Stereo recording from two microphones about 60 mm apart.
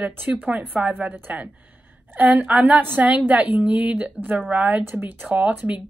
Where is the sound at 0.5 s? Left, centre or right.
Right.